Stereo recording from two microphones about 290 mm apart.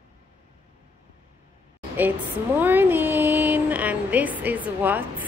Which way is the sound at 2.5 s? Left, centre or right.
Centre.